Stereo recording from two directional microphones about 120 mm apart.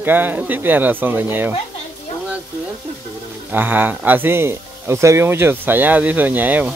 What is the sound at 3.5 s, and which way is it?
Speech, 15° right (ahead or behind).